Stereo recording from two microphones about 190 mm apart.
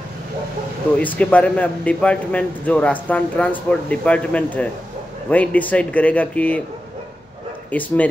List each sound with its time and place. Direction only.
0.9 s a man's voice: 5° left (ahead or behind)
7.7 s a man's voice: 10° left (ahead or behind)